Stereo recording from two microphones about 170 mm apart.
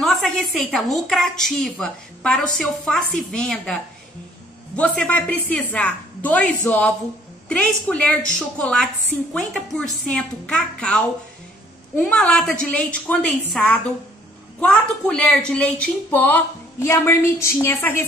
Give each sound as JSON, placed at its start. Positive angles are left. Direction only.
{"t": 0.0, "sound": "a woman's voice", "side_deg": 0}